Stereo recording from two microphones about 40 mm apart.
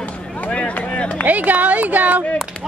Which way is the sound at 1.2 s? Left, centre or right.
Right.